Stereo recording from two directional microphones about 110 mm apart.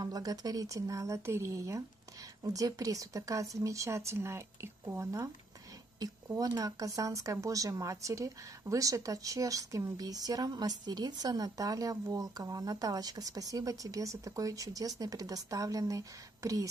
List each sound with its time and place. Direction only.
0.0 s speech: 35° right (ahead or behind)